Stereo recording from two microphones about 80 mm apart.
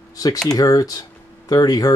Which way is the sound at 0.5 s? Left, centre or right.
Left.